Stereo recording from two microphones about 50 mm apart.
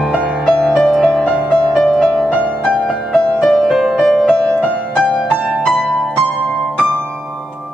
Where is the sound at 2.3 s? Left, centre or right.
Right.